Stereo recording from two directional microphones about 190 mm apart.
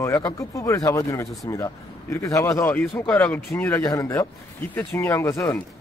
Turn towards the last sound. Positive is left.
turn(degrees=15)  # may be behind; listen again after turning